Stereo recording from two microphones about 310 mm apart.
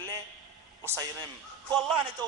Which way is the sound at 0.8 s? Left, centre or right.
Centre.